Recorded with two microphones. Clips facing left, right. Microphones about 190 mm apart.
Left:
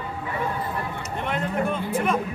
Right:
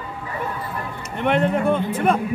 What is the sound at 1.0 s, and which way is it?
Speech, 65° right (ahead or behind).